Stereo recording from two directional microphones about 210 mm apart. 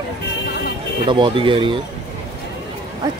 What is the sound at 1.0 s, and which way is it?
Speech, 25° right (ahead or behind).